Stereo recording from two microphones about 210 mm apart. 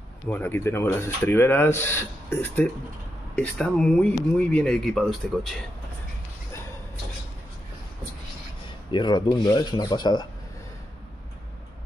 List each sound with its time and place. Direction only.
0.3 s speech: 10° left (ahead or behind)
8.9 s speech: 20° left (ahead or behind)